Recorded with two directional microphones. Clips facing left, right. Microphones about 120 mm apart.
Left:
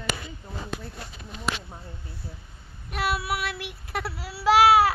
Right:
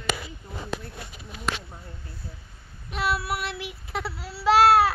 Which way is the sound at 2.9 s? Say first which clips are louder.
Even; 5° left (ahead or behind).